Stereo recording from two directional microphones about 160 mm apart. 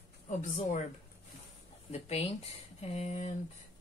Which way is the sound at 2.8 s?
40° left (ahead or behind).